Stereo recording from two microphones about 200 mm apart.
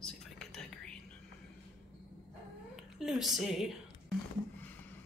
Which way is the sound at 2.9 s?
Centre (ahead or behind).